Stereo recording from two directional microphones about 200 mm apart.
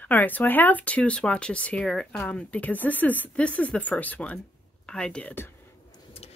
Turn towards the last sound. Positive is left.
turn(degrees=30)  # may be behind; listen again after turning